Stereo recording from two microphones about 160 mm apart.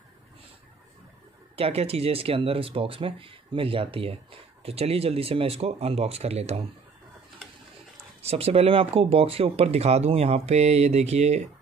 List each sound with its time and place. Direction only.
1.6 s speech: 40° right (ahead or behind)
8.2 s speech: 40° right (ahead or behind)